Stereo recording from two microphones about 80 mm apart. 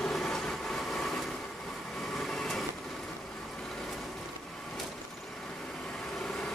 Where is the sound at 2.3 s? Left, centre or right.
Centre.